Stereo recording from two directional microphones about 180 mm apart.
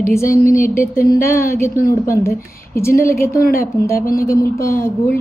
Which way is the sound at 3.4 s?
50° left (ahead or behind).